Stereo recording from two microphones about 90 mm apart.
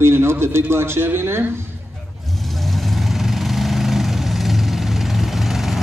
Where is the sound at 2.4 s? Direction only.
Centre (ahead or behind).